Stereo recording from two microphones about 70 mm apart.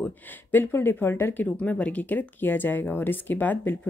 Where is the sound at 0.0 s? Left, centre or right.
Left.